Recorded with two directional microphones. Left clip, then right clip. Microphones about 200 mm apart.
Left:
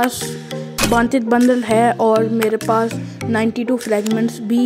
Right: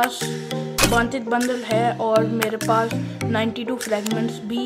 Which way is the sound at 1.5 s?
50° left (ahead or behind).